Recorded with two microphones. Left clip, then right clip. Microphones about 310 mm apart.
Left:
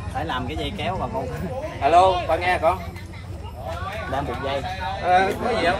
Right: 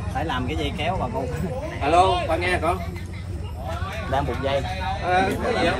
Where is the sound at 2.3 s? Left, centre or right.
Left.